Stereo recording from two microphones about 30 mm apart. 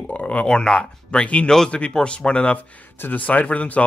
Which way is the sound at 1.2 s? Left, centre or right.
Left.